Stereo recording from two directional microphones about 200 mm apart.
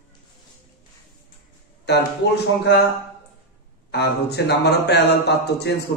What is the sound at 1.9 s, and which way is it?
Speech, 55° left (ahead or behind).